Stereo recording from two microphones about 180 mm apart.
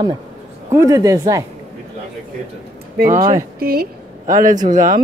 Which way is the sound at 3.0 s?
50° right (ahead or behind).